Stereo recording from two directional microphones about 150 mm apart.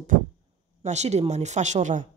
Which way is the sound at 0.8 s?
50° right (ahead or behind).